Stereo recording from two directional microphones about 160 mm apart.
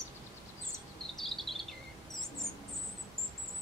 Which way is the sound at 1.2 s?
Centre (ahead or behind).